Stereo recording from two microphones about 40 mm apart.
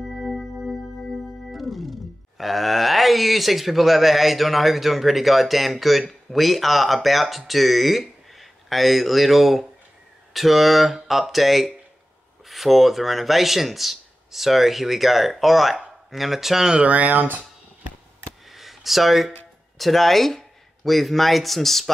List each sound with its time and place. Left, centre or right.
0.2 s music: centre
0.7 s speech: centre
16.8 s speech: right
18.5 s a sound: centre
19.8 s speech: centre